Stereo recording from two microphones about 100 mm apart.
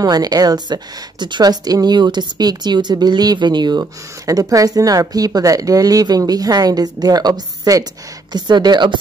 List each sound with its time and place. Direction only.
0.0 s speech: 40° right (ahead or behind)
4.3 s speech: 35° right (ahead or behind)